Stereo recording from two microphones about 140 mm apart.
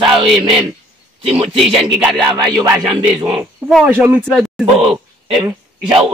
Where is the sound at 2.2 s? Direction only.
30° right (ahead or behind).